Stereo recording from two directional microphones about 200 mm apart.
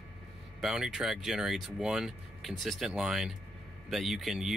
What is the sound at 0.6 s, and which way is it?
Speech, centre (ahead or behind).